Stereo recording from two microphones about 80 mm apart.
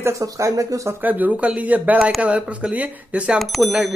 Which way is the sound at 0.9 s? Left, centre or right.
Right.